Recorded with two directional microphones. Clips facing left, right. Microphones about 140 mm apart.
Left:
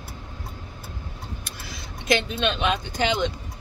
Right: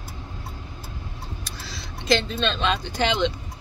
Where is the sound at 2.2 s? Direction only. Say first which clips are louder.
Even; 15° left (ahead or behind).